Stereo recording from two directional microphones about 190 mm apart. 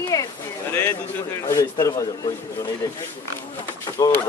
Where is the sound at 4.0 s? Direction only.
20° left (ahead or behind).